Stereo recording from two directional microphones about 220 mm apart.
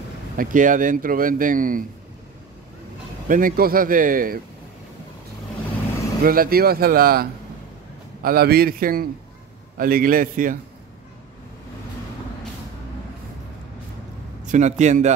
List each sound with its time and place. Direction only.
0.4 s speech: 35° right (ahead or behind)
3.3 s speech: 40° right (ahead or behind)
6.2 s speech: 40° right (ahead or behind)
14.4 s a man's voice: 35° right (ahead or behind)